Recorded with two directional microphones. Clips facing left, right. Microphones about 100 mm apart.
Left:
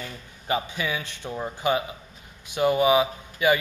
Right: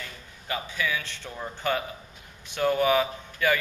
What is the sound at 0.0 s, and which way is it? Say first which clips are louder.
A man's voice: left 4 dB; 25° left (ahead or behind).